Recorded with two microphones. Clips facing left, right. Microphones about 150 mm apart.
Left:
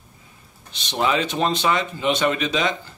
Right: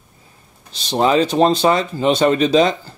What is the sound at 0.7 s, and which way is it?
Speech, 35° right (ahead or behind).